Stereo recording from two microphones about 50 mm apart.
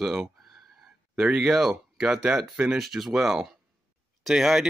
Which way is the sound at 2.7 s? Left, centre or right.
Centre.